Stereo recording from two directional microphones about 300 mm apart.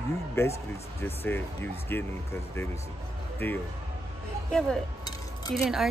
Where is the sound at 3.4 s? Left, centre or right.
Centre.